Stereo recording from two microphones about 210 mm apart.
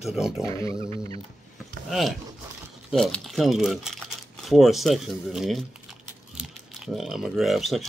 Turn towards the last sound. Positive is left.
turn(degrees=0)  # may be behind; listen again after turning